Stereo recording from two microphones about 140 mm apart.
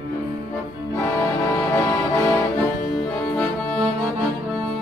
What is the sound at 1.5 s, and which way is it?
Music, 15° left (ahead or behind).